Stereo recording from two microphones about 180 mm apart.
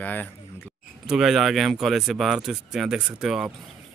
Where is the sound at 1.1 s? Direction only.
Centre (ahead or behind).